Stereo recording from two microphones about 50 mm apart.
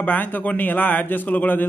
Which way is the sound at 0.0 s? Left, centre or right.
Left.